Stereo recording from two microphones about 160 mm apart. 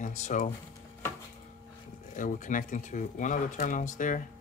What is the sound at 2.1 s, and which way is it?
Speech, 55° left (ahead or behind).